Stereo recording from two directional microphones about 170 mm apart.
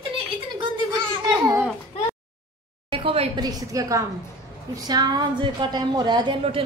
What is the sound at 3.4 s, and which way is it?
A woman's voice, 20° right (ahead or behind).